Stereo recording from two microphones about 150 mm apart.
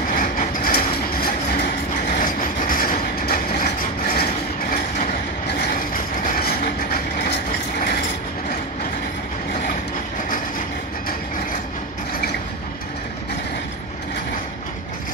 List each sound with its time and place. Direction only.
0.1 s vehicle: 70° left (ahead or behind)
2.1 s vehicle: 65° left (ahead or behind)
6.2 s vehicle: 80° left